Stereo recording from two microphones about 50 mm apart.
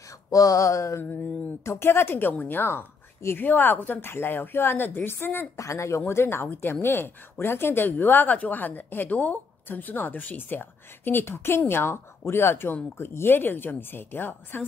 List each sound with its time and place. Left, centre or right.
0.7 s mantra: left
1.0 s a woman's voice: left
1.6 s a woman's voice: left
5.6 s speech: left
6.5 s a woman's voice: left